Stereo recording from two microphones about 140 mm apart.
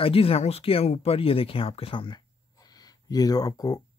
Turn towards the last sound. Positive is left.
turn(degrees=25)  # may be behind; listen again after turning